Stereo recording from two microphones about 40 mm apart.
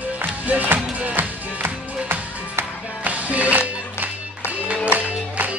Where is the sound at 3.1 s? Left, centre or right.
Right.